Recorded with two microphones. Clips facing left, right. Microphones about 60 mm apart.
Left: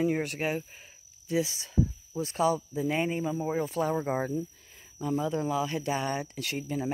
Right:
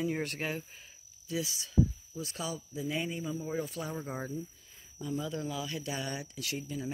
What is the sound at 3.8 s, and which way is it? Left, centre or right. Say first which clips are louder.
Speech: left 9 dB; left.